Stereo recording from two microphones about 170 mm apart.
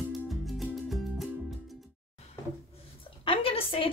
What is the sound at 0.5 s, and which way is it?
Music, centre (ahead or behind).